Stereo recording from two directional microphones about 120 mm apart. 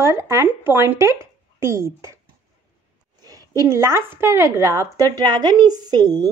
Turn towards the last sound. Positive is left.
turn(degrees=-35)  # may be behind; listen again after turning